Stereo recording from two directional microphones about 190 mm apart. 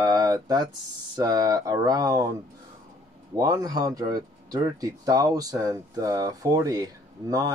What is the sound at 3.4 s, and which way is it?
Speech, 20° right (ahead or behind).